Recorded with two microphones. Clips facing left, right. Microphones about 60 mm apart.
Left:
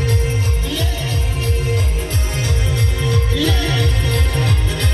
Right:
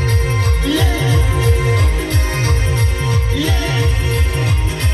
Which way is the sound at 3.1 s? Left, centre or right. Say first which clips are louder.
Left 2 dB; right.